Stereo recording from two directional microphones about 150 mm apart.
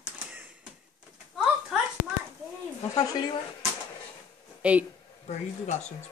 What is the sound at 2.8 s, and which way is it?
Speech, 25° left (ahead or behind).